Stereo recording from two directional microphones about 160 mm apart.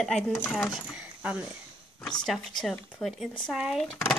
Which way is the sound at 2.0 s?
5° left (ahead or behind).